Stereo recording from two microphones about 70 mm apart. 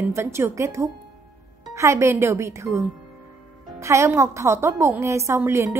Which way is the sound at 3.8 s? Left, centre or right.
Right.